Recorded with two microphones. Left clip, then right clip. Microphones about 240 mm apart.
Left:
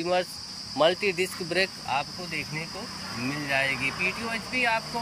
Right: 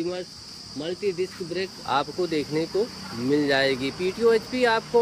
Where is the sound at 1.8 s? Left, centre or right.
Right.